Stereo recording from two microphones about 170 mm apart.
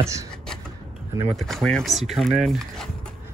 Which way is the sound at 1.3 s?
Centre (ahead or behind).